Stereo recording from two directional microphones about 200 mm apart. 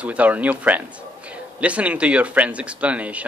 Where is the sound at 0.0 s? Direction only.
5° right (ahead or behind).